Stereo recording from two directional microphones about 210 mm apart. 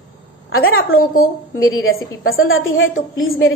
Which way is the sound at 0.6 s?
75° left (ahead or behind).